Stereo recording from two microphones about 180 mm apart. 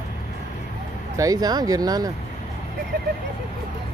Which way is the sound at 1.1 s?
20° right (ahead or behind).